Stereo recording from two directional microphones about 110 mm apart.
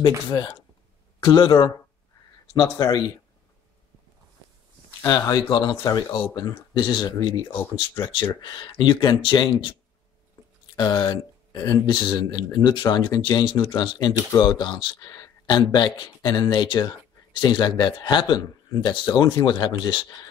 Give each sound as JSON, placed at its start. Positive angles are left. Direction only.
{"t": 0.3, "sound": "speech", "side_deg": 45}
{"t": 5.0, "sound": "speech", "side_deg": 30}
{"t": 6.8, "sound": "speech", "side_deg": 45}
{"t": 10.8, "sound": "speech", "side_deg": 45}